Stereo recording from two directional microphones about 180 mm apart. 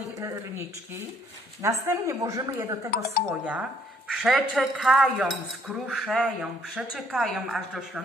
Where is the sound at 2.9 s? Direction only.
55° left (ahead or behind).